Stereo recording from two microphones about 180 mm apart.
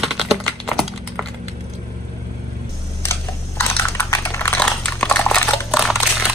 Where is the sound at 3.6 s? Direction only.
15° left (ahead or behind).